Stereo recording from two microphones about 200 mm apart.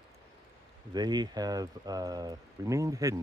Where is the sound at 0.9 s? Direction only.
20° right (ahead or behind).